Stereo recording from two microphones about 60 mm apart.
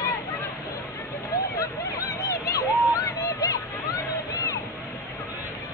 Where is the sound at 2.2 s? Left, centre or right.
Left.